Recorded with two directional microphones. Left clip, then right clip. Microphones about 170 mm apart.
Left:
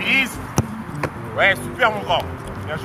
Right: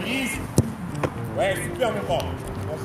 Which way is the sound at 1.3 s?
25° left (ahead or behind).